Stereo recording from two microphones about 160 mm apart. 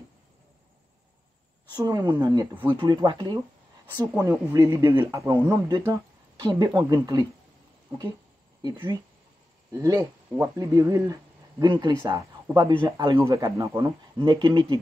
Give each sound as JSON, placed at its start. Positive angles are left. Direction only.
{"t": 1.7, "sound": "speech", "side_deg": -25}
{"t": 4.1, "sound": "speech", "side_deg": -15}
{"t": 9.7, "sound": "speech", "side_deg": -20}
{"t": 14.1, "sound": "speech", "side_deg": -30}